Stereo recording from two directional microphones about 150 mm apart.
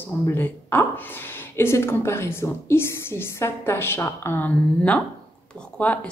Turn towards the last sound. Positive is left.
turn(degrees=10)  # may be behind; listen again after turning